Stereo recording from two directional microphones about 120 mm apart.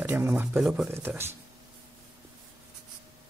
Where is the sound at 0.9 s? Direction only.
20° right (ahead or behind).